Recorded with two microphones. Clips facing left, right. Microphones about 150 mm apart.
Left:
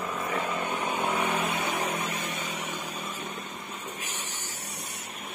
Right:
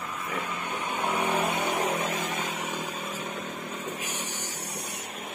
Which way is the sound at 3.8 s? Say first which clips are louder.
Right 4 dB; 15° right (ahead or behind).